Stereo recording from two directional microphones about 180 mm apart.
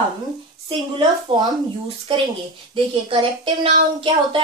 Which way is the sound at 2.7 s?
30° right (ahead or behind).